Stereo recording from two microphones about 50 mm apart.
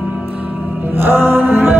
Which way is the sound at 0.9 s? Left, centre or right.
Right.